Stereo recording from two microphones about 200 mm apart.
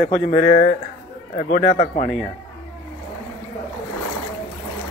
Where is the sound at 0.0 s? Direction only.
35° left (ahead or behind).